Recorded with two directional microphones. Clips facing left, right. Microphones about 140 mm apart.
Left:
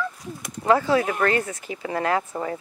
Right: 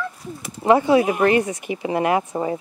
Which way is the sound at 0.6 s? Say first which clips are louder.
Right 4 dB; 20° right (ahead or behind).